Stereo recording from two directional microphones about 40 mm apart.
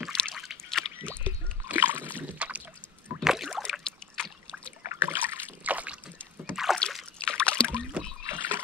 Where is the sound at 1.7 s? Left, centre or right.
Right.